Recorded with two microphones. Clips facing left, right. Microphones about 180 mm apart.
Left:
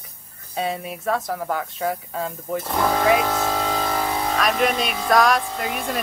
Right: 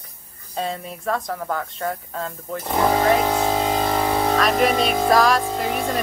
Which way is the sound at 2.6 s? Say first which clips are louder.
Right 4 dB; 15° right (ahead or behind).